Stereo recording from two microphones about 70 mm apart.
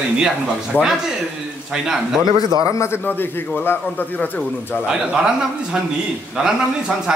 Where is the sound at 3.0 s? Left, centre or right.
Left.